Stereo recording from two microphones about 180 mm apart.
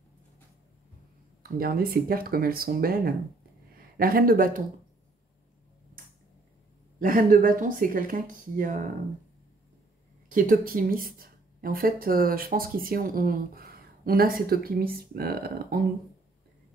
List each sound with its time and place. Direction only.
1.6 s speech: 55° right (ahead or behind)
7.0 s speech: 50° right (ahead or behind)
10.3 s speech: 50° right (ahead or behind)